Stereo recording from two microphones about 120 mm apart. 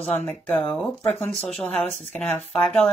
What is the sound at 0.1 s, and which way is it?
Speech, 10° left (ahead or behind).